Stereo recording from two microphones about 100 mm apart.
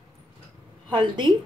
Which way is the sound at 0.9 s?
50° right (ahead or behind).